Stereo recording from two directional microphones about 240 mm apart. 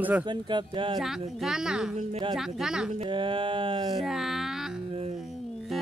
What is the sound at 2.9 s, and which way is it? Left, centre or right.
Speech, right.